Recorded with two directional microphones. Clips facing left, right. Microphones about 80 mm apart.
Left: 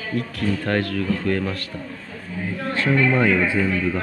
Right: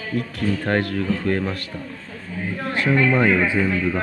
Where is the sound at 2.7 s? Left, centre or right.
Centre.